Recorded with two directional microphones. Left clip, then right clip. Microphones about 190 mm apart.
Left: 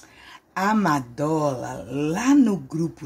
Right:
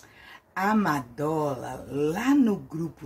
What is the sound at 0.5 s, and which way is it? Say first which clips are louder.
Speech: left 4 dB; 25° left (ahead or behind).